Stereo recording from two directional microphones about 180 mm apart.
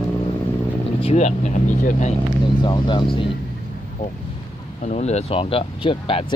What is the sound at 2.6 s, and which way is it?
Speech, 25° left (ahead or behind).